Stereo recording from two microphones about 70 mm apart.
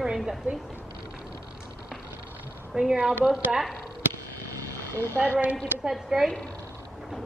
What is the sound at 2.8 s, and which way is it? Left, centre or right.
Speech, centre.